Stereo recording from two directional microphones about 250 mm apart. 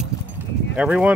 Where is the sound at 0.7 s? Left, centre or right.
Centre.